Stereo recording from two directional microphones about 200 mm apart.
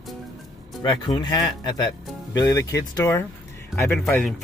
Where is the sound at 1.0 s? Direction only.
20° left (ahead or behind).